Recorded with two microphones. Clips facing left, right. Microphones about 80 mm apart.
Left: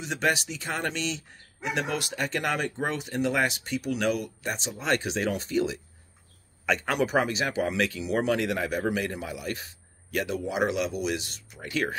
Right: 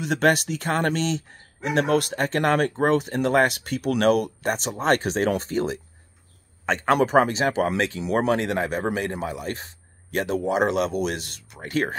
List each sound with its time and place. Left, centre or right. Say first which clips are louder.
0.0 s speech: right 6 dB; right
8.0 s speech: right 5 dB; right